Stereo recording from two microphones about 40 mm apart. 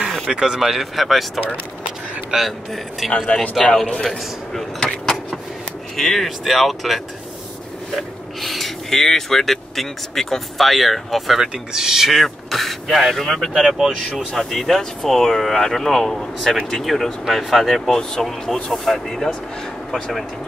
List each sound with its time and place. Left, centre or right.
0.3 s speech: centre
0.6 s speech: centre
3.3 s a man's voice: left
4.1 s a sound: centre
5.9 s speech: centre
8.4 s speech: centre
11.4 s speech: centre
13.7 s speech: centre
14.3 s speech: centre
16.8 s speech: centre